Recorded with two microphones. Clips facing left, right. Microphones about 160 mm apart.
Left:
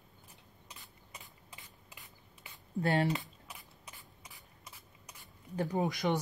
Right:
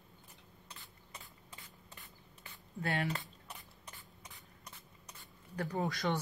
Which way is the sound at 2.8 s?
35° left (ahead or behind).